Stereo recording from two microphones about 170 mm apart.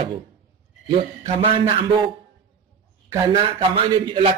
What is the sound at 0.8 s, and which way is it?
Speech, 30° right (ahead or behind).